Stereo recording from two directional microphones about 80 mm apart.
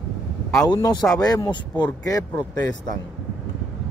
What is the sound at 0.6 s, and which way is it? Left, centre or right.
Speech, left.